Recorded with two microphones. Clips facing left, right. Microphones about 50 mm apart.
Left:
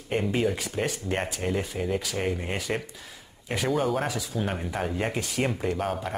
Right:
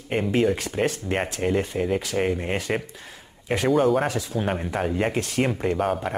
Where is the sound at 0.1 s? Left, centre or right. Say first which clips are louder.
Right 4 dB; centre.